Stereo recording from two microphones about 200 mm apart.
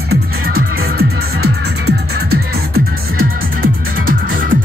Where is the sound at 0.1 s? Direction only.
50° right (ahead or behind).